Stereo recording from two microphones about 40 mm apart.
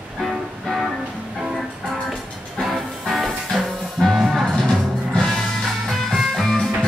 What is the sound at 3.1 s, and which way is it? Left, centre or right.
Music, centre.